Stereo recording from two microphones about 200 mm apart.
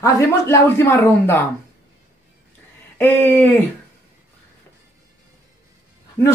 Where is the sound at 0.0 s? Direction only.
15° left (ahead or behind).